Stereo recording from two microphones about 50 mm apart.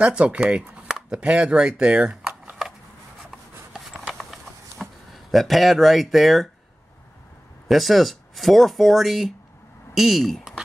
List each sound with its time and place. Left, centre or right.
0.0 s speech: right
4.2 s a sound: centre
7.6 s speech: centre